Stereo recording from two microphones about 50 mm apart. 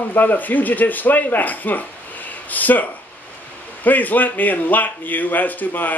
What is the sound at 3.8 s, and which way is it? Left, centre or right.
A man's voice, left.